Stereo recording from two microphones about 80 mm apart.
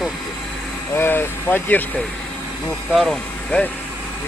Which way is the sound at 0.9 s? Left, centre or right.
Left.